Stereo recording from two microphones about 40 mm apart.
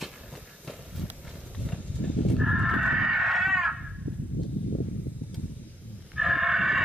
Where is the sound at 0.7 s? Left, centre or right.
Centre.